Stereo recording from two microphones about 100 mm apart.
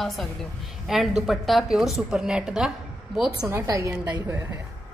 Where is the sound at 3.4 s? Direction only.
30° right (ahead or behind).